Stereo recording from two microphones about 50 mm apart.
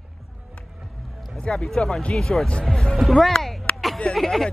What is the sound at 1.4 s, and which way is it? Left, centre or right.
Speech, centre.